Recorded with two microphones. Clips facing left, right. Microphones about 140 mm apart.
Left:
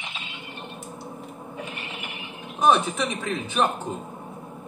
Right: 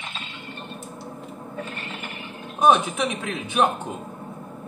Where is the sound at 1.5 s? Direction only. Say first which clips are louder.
Right 2 dB; 15° left (ahead or behind).